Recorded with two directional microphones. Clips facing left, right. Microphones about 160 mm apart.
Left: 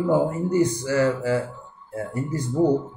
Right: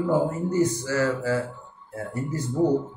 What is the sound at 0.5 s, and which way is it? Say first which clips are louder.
Speech: left 3 dB; 15° left (ahead or behind).